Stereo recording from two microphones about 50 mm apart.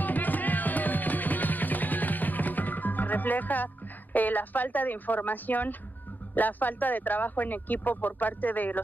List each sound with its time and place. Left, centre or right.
0.0 s music: left
6.3 s speech: left